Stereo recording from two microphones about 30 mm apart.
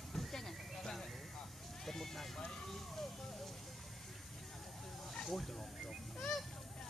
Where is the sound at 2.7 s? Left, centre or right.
Centre.